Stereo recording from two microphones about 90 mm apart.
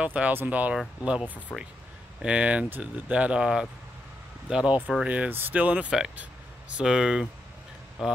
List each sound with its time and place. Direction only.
0.0 s speech: 15° right (ahead or behind)